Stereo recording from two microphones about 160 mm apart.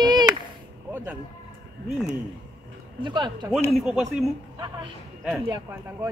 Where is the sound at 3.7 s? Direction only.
Centre (ahead or behind).